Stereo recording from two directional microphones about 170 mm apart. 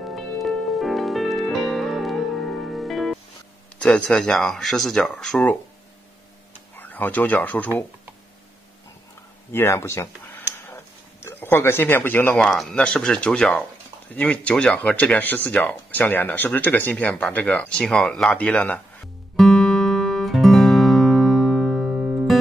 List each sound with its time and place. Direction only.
0.1 s music: centre (ahead or behind)
3.8 s speech: 5° left (ahead or behind)
6.7 s speech: 10° left (ahead or behind)
9.5 s speech: 15° left (ahead or behind)
19.3 s music: centre (ahead or behind)